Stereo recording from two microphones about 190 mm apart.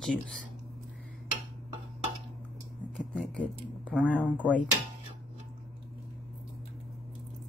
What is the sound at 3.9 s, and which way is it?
Speech, 5° right (ahead or behind).